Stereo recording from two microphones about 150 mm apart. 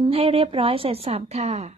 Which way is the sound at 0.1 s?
40° right (ahead or behind).